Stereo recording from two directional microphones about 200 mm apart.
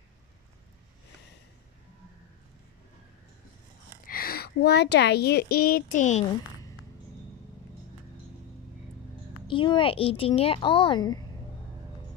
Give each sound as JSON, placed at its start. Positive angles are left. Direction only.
{"t": 4.0, "sound": "speech", "side_deg": 45}
{"t": 9.5, "sound": "a woman's voice", "side_deg": 25}